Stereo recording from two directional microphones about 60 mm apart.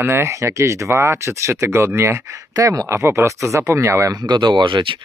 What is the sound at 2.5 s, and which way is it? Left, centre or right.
Speech, right.